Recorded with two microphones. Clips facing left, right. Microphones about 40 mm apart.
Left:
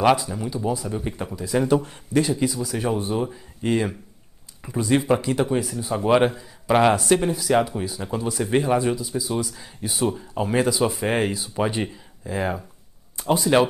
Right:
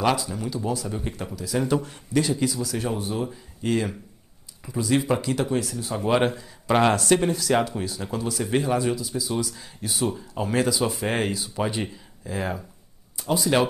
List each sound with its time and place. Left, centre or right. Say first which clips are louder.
0.0 s speech: left 4 dB; centre
1.1 s speech: left 5 dB; left